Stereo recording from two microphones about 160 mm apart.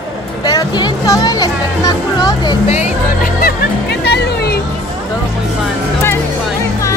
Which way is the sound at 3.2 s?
75° left (ahead or behind).